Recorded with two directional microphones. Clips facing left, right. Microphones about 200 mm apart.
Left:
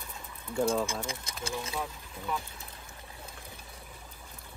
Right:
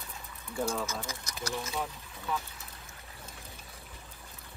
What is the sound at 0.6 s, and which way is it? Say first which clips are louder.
Speech: left 5 dB; 30° left (ahead or behind).